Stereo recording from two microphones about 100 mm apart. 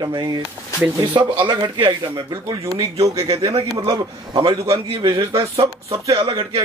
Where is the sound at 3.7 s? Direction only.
40° right (ahead or behind).